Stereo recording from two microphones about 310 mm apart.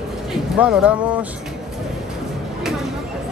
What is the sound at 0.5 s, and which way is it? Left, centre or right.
Speech, centre.